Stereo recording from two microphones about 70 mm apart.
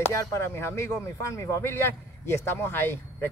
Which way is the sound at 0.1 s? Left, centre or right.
Left.